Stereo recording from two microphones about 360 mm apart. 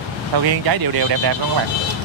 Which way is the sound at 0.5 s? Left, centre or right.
Right.